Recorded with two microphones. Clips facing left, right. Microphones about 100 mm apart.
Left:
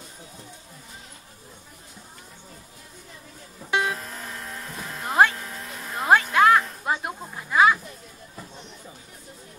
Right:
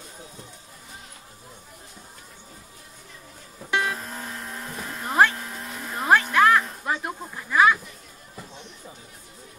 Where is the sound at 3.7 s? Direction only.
20° left (ahead or behind).